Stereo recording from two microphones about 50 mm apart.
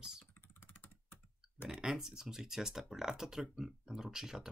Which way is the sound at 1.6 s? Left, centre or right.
Centre.